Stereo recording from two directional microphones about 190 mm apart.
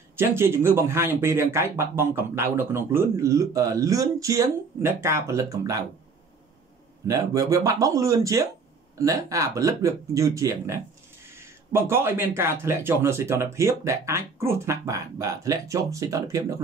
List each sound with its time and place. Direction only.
0.4 s speech: 15° right (ahead or behind)
7.1 s speech: 20° right (ahead or behind)